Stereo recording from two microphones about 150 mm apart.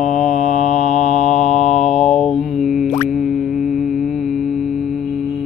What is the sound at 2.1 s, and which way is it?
Mantra, centre (ahead or behind).